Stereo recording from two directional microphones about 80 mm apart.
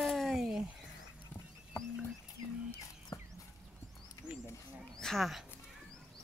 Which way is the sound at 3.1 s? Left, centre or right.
Left.